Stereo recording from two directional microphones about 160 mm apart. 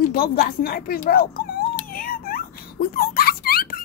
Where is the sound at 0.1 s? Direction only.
70° left (ahead or behind).